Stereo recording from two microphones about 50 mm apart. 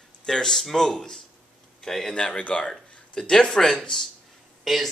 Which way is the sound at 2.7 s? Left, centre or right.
Centre.